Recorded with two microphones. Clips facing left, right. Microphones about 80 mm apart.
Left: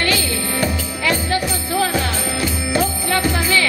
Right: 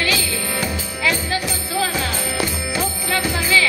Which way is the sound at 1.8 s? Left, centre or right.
Left.